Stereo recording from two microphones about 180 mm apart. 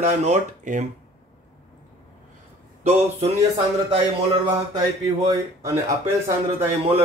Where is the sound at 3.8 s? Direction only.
25° right (ahead or behind).